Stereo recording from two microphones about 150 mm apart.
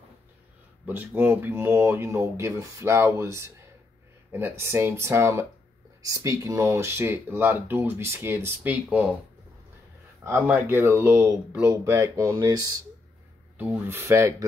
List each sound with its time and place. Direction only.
0.8 s speech: 15° right (ahead or behind)
10.2 s speech: 15° right (ahead or behind)